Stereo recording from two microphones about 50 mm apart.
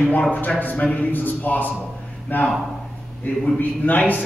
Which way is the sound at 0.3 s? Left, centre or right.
Left.